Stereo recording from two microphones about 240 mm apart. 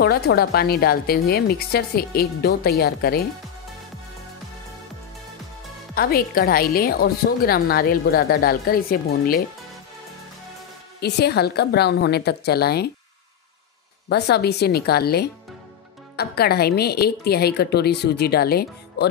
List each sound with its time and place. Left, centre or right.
0.0 s a woman's voice: left
5.9 s a woman's voice: left
11.0 s a woman's voice: left
14.0 s a woman's voice: left